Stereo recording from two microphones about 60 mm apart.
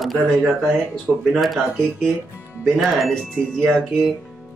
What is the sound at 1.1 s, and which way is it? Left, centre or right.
Speech, right.